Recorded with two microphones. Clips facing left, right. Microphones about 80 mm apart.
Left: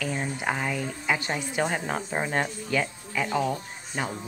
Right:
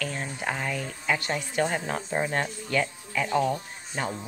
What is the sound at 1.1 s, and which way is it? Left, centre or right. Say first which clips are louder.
Speech: right 1 dB; centre.